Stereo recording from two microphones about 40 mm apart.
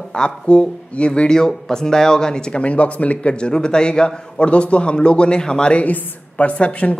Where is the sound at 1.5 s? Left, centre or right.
Centre.